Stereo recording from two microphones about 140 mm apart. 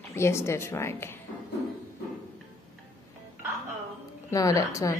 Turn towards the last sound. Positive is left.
turn(degrees=25)  # may be behind; listen again after turning